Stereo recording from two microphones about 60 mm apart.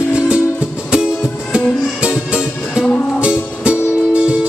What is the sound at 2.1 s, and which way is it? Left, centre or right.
Music, centre.